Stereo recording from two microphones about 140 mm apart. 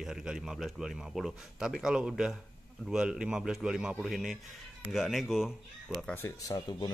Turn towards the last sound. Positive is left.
turn(degrees=30)  # may be behind; listen again after turning